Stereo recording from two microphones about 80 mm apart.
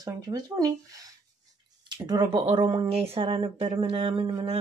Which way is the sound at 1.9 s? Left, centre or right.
Right.